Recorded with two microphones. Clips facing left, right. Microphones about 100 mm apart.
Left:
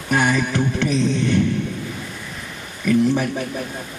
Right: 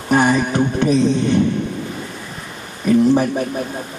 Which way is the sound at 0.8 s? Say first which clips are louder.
Right 6 dB; 35° right (ahead or behind).